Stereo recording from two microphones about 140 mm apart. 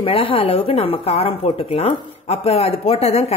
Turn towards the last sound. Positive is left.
turn(degrees=50)  # may be behind; listen again after turning